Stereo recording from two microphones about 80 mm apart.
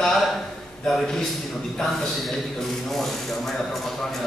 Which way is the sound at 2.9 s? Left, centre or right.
Centre.